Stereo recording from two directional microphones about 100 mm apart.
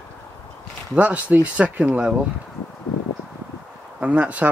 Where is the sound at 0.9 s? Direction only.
15° right (ahead or behind).